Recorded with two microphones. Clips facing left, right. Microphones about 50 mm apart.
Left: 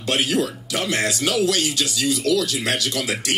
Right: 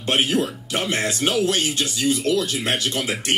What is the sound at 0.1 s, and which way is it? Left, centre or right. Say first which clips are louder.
Speech: right 1 dB; right.